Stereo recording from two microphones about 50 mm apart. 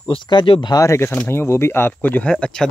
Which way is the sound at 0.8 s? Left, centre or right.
Left.